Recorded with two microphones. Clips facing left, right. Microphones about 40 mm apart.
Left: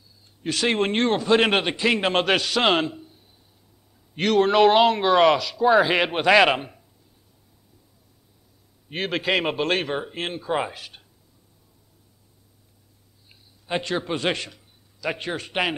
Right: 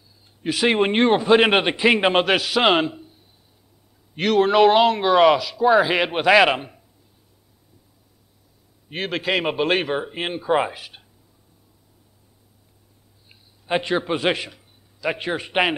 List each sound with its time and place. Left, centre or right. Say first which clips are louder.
0.4 s speech: right 3 dB; centre
2.1 s a man's voice: right 2 dB; centre
8.8 s speech: even; centre
13.3 s a man's voice: right 4 dB; centre